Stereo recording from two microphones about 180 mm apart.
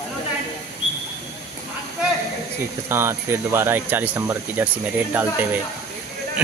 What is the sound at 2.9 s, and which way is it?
Speech, 15° right (ahead or behind).